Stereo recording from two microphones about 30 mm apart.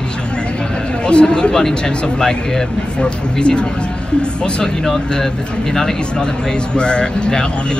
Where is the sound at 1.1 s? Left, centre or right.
Left.